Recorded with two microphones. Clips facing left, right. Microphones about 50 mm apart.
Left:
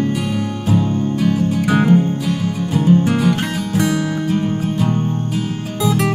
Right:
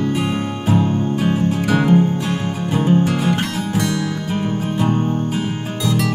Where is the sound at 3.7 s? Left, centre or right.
Centre.